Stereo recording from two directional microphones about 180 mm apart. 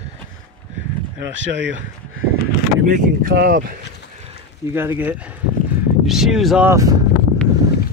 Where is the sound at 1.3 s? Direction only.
90° right.